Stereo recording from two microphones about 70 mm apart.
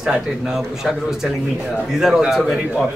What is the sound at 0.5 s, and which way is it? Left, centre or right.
Speech, centre.